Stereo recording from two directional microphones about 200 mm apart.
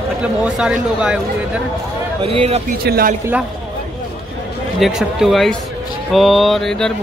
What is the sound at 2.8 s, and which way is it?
Speech, 50° right (ahead or behind).